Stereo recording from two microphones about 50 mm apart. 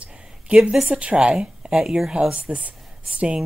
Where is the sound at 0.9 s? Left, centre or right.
Right.